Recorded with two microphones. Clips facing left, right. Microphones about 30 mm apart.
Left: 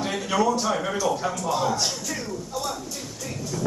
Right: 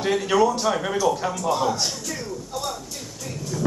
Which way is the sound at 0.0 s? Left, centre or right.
Right.